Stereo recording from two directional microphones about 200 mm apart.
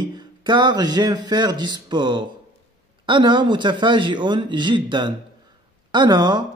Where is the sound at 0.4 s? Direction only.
20° right (ahead or behind).